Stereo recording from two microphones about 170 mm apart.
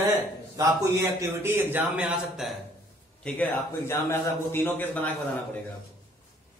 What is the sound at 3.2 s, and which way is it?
Speech, 10° left (ahead or behind).